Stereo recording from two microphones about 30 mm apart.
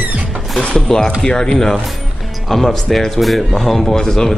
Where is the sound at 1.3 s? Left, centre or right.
Left.